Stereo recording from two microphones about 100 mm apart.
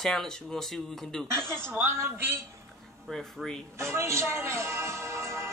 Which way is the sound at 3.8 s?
25° right (ahead or behind).